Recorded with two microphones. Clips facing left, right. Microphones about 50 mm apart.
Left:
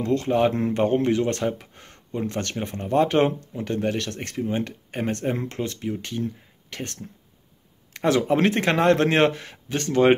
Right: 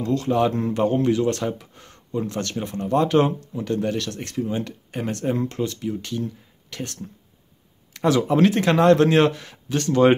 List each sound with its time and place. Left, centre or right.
0.0 s speech: left
7.9 s a sound: left
8.2 s speech: left